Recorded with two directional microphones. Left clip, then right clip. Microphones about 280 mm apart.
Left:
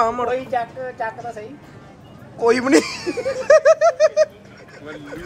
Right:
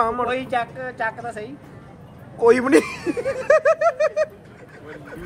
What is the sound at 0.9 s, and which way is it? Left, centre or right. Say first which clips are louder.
Speech: right 1 dB; right.